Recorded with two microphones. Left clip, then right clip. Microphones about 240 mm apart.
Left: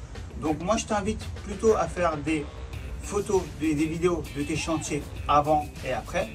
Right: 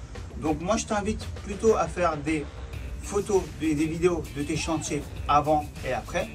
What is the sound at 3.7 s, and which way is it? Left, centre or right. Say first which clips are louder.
Speech: right 1 dB; centre.